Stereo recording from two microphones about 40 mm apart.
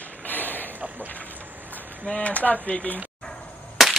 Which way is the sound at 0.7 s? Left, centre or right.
Right.